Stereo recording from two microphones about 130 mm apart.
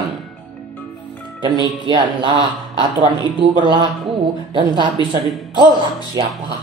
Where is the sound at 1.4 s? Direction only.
35° right (ahead or behind).